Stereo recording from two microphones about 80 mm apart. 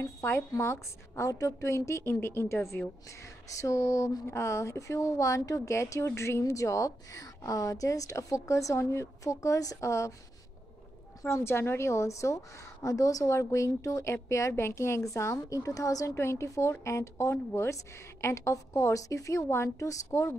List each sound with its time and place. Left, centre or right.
0.0 s speech: left
11.2 s speech: left
16.2 s speech: left